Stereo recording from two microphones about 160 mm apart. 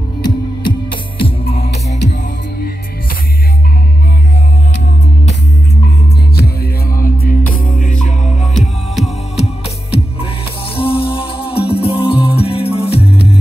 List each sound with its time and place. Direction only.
0.2 s music: 30° left (ahead or behind)
7.0 s music: 60° left (ahead or behind)
9.4 s music: 40° left (ahead or behind)